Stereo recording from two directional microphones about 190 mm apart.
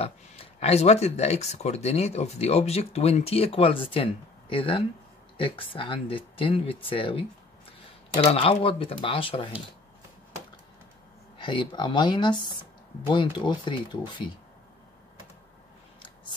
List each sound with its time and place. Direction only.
0.0 s speech: 30° left (ahead or behind)
11.3 s speech: 25° left (ahead or behind)